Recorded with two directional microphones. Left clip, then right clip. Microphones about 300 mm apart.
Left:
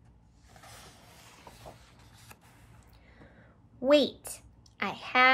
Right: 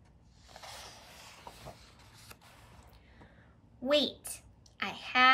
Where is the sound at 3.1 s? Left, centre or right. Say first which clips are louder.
Left 3 dB; centre.